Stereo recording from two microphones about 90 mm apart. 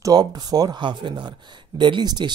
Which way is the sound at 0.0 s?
50° right (ahead or behind).